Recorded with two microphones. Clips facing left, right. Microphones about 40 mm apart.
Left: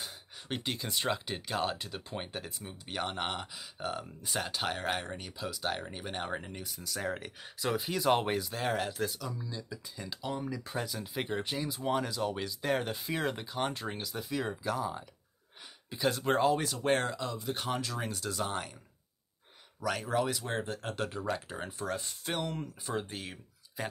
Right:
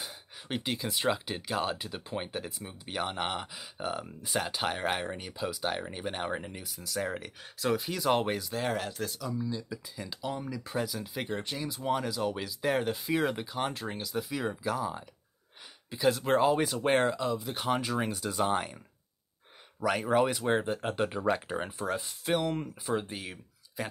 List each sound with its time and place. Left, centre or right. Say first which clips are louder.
0.0 s speech: right 1 dB; centre
17.6 s speech: right 9 dB; centre
19.8 s speech: right 5 dB; centre